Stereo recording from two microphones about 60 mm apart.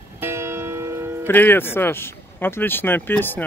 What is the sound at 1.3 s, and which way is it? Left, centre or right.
Speech, left.